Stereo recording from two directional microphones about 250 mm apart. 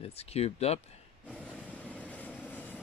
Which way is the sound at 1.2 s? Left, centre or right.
Centre.